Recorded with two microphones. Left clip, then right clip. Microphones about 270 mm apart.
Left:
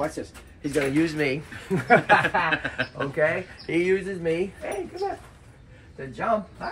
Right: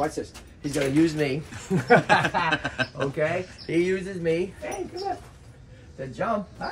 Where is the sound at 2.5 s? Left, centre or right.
Centre.